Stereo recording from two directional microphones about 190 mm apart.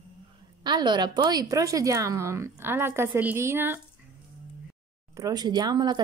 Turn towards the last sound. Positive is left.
turn(degrees=-20)  # may be behind; listen again after turning